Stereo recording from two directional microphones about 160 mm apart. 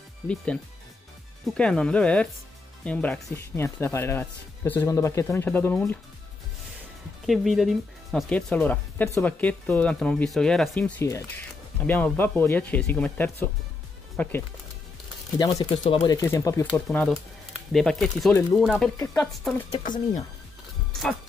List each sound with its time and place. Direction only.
1.4 s speech: 5° left (ahead or behind)
7.2 s speech: centre (ahead or behind)
10.7 s speech: 15° left (ahead or behind)
15.5 s speech: 40° left (ahead or behind)
15.9 s speech: 20° left (ahead or behind)
17.1 s speech: centre (ahead or behind)
20.9 s music: centre (ahead or behind)